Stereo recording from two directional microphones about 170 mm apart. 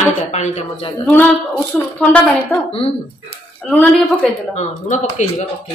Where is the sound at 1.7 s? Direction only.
10° left (ahead or behind).